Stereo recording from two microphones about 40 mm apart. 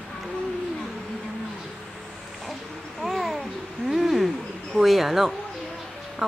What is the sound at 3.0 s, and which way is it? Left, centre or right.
Babbling, centre.